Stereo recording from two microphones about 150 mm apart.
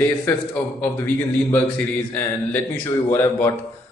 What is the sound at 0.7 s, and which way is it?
A man's voice, 10° left (ahead or behind).